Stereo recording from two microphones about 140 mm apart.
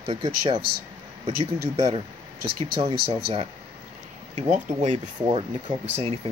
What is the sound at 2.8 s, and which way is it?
Speech, 45° right (ahead or behind).